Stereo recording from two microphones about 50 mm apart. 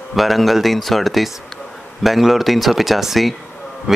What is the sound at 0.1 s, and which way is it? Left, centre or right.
Speech, centre.